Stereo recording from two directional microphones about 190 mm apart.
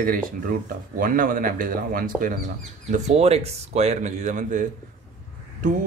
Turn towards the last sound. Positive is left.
turn(degrees=-45)  # may be behind; listen again after turning